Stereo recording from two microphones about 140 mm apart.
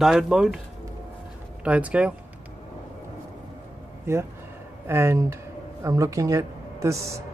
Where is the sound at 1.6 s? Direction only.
10° right (ahead or behind).